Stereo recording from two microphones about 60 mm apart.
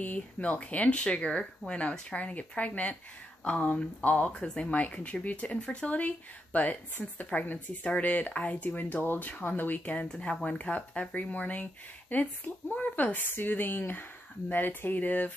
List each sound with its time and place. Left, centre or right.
0.0 s speech: left
10.0 s a woman's voice: centre